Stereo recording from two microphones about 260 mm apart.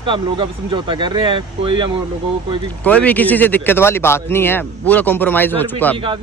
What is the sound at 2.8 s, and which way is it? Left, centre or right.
Speech, centre.